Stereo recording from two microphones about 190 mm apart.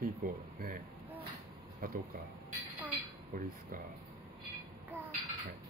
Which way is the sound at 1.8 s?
50° right (ahead or behind).